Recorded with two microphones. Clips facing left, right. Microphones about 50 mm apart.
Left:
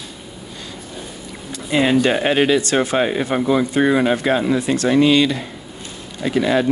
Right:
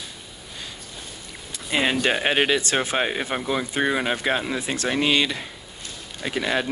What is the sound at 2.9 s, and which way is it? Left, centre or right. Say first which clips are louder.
Speech: left 6 dB; centre.